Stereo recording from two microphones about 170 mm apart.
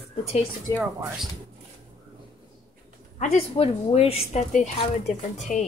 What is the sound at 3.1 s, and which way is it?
A woman's voice, 40° left (ahead or behind).